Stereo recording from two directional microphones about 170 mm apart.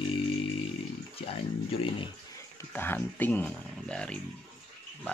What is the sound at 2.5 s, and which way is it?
Speech, 10° left (ahead or behind).